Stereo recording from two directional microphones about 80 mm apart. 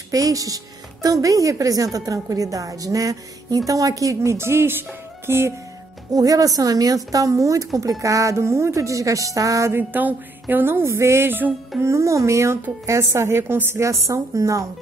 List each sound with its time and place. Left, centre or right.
0.1 s a woman's voice: right
6.1 s a woman's voice: right
9.8 s a sound: right
11.8 s a woman's voice: right